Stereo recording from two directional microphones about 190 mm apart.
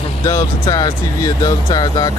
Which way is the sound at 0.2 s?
20° left (ahead or behind).